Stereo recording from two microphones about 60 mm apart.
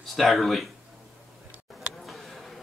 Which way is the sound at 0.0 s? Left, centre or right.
Centre.